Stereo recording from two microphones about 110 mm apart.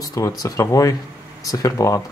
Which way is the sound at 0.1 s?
30° left (ahead or behind).